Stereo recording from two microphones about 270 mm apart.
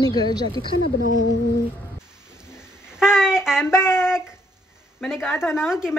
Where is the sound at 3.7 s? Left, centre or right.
Centre.